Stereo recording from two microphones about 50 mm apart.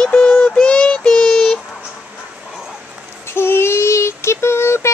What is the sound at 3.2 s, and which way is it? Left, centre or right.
Child singing, left.